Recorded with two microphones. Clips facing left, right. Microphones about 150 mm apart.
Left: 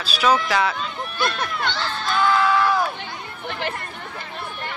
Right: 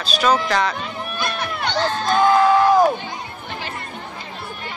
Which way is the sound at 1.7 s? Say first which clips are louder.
Right 6 dB; 45° right (ahead or behind).